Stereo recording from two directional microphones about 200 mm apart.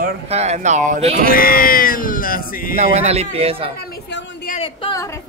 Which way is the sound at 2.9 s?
30° right (ahead or behind).